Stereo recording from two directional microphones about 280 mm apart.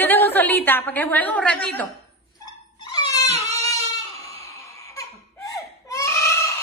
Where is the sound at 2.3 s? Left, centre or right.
Centre.